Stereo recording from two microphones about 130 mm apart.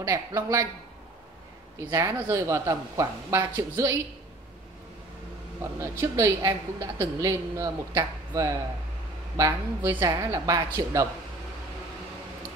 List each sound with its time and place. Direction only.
0.0 s a woman's voice: 25° right (ahead or behind)
1.8 s a woman's voice: 25° right (ahead or behind)
5.6 s a woman's voice: 20° right (ahead or behind)
9.4 s a woman's voice: 20° right (ahead or behind)